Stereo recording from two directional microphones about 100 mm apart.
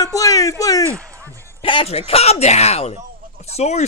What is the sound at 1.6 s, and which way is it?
Speech, 60° left (ahead or behind).